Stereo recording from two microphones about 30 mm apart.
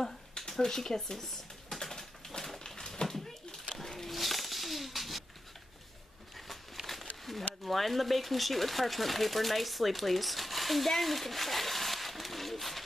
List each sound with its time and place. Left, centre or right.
0.5 s speech: centre
1.8 s typewriter: centre
2.6 s a sound: centre
6.3 s a sound: centre
7.6 s speech: centre
11.0 s pigeon: centre